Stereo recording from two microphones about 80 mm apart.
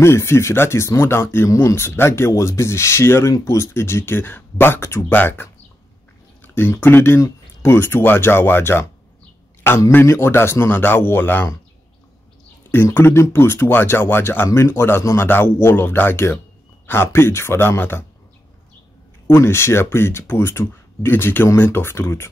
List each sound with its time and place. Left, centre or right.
0.0 s speech: left
12.7 s speech: left
19.2 s speech: left